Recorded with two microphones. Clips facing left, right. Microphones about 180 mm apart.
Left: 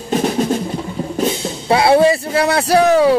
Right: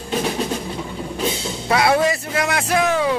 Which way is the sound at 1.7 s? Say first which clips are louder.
Left 6 dB; 30° left (ahead or behind).